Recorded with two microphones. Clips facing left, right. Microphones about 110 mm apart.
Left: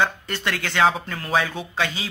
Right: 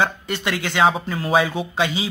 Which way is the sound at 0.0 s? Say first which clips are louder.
Right 1 dB; 10° right (ahead or behind).